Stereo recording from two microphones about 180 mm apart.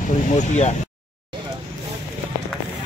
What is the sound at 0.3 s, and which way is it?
Speech, 40° left (ahead or behind).